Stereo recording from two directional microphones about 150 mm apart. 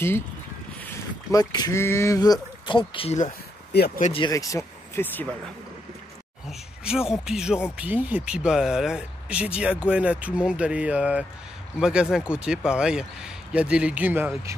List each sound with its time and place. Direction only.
1.3 s speech: 25° left (ahead or behind)
4.2 s speech: 20° left (ahead or behind)
6.8 s speech: 5° right (ahead or behind)